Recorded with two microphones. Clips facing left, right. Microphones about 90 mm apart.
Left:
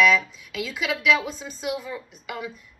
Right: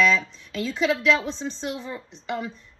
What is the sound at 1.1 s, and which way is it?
Speech, 10° left (ahead or behind).